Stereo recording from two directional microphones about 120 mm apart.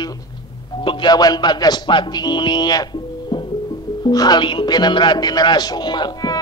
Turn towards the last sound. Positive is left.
turn(degrees=35)  # may be behind; listen again after turning